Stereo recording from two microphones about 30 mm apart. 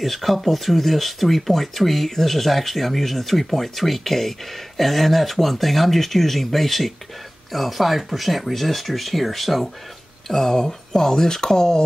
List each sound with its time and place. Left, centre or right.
0.0 s speech: centre
10.2 s speech: centre